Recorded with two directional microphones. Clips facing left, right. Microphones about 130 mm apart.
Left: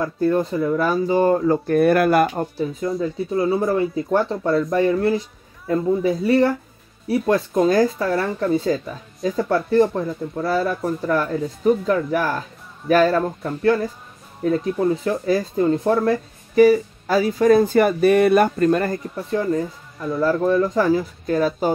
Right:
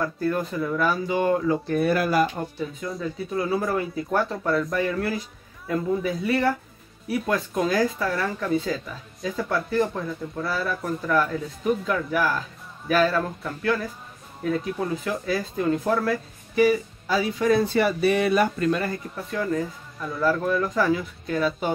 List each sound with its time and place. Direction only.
0.0 s speech: 25° left (ahead or behind)
1.7 s speech: 55° left (ahead or behind)
3.0 s speech: 25° left (ahead or behind)
16.5 s a sound: 45° left (ahead or behind)
19.3 s speech: 25° left (ahead or behind)